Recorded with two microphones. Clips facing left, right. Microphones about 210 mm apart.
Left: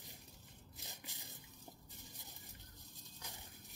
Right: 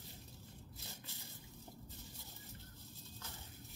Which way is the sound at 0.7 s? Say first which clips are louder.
Left 3 dB; 15° left (ahead or behind).